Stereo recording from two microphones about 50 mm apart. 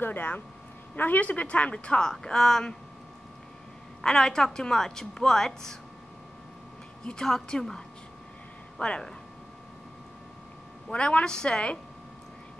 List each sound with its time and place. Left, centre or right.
0.0 s a woman's voice: left
2.0 s a woman's voice: centre
4.0 s a woman's voice: centre
7.1 s a woman's voice: centre
10.9 s a woman's voice: left